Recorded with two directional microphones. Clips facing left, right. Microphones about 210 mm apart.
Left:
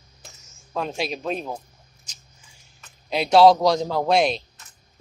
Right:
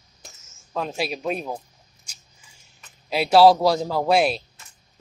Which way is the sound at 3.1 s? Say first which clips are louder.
Even; 5° right (ahead or behind).